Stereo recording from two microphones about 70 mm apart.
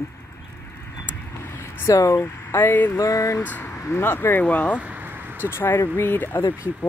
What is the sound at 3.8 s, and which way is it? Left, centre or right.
Speech, left.